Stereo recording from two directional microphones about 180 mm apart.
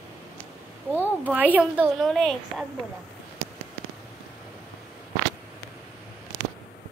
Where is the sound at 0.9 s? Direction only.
10° right (ahead or behind).